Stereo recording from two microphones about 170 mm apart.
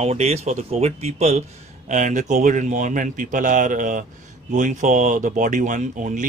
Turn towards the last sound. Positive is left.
turn(degrees=-50)  # may be behind; listen again after turning